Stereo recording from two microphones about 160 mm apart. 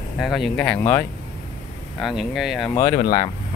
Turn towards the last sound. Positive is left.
turn(degrees=55)  # may be behind; listen again after turning